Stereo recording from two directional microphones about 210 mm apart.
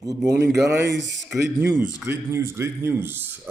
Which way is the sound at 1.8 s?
5° right (ahead or behind).